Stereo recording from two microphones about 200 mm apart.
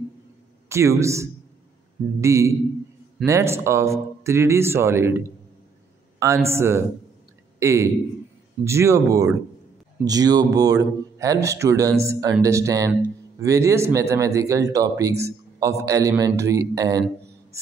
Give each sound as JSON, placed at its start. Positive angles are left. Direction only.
{"t": 0.7, "sound": "a man's voice", "side_deg": -15}